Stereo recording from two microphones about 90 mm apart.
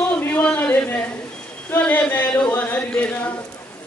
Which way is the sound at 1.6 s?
15° left (ahead or behind).